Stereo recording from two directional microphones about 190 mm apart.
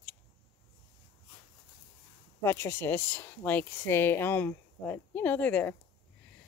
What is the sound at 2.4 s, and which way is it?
Speech, 10° left (ahead or behind).